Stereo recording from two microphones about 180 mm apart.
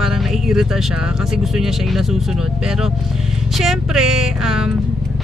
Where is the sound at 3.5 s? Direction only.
Centre (ahead or behind).